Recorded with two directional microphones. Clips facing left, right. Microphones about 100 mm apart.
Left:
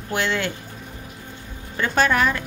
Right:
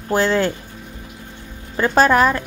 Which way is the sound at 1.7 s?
35° right (ahead or behind).